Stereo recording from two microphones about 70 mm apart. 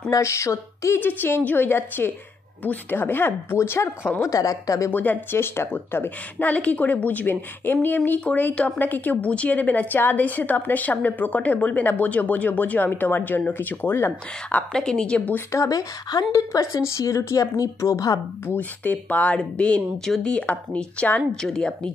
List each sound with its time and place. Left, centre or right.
0.1 s speech: left
0.9 s speech: left
4.2 s speech: left
4.9 s a woman's voice: left
14.5 s speech: centre
15.3 s speech: left
15.7 s speech: left
16.3 s speech: left
18.5 s a woman's voice: left
21.4 s speech: centre